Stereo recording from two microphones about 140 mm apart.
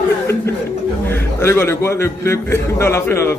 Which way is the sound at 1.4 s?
20° left (ahead or behind).